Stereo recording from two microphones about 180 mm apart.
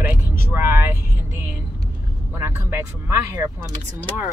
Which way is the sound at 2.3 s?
15° right (ahead or behind).